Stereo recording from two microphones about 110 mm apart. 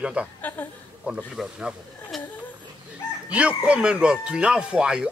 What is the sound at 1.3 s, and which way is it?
Speech, 5° right (ahead or behind).